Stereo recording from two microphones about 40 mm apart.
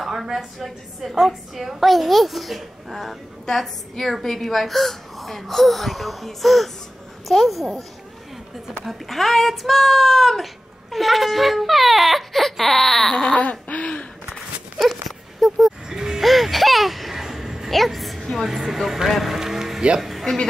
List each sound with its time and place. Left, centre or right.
0.1 s speech: centre
8.8 s speech: centre
13.1 s a sound: centre
13.4 s laughter: left
14.8 s wail: centre
15.5 s music: centre
16.2 s a sound: centre
17.6 s a woman's voice: centre
19.0 s music: centre
20.0 s a sound: centre